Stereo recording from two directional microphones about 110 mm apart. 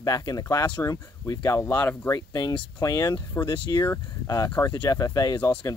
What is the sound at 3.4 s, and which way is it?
Speech, 45° left (ahead or behind).